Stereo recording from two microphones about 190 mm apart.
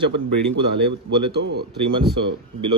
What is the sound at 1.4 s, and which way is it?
Speech, 60° right (ahead or behind).